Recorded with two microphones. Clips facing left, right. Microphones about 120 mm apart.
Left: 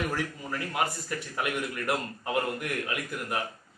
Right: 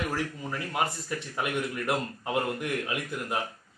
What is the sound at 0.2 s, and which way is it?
A man's voice, 25° right (ahead or behind).